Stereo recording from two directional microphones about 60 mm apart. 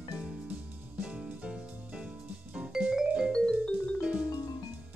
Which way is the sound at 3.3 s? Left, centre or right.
Centre.